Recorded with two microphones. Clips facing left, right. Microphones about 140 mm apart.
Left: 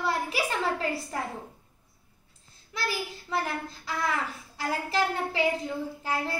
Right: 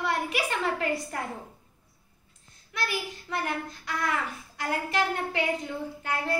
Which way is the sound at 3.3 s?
30° left (ahead or behind).